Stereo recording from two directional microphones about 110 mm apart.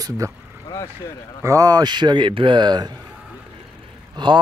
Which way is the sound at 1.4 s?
30° right (ahead or behind).